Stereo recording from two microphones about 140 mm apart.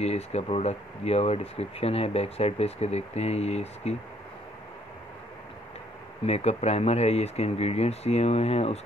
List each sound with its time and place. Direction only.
0.0 s speech: 50° left (ahead or behind)
6.2 s speech: 50° left (ahead or behind)